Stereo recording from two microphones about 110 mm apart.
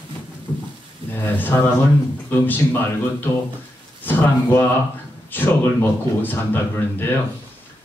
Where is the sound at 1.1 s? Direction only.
15° left (ahead or behind).